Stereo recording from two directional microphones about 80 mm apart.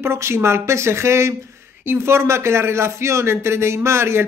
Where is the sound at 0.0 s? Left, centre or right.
Right.